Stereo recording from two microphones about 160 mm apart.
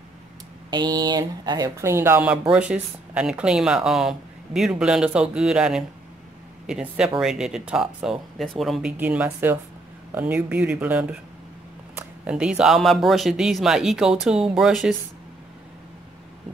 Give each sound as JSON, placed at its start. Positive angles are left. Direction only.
{"t": 0.7, "sound": "speech", "side_deg": -25}